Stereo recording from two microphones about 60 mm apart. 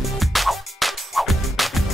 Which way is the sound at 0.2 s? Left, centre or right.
Centre.